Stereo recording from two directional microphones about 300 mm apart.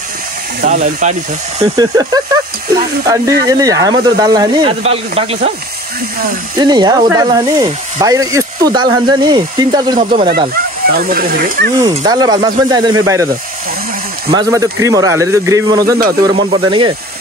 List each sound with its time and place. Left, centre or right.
0.6 s speech: right
1.6 s speech: centre
3.4 s speech: centre
6.6 s speech: centre
9.9 s speech: right
11.8 s speech: centre
14.3 s speech: centre